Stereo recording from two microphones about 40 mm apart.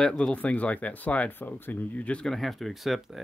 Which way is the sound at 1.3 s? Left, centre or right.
Left.